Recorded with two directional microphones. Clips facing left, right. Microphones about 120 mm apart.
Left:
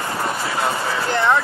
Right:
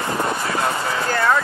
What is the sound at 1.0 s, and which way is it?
Speech, 20° left (ahead or behind).